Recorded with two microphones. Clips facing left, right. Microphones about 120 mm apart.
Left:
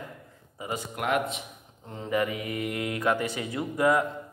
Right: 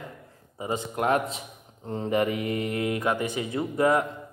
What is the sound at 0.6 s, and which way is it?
A man's voice, 25° right (ahead or behind).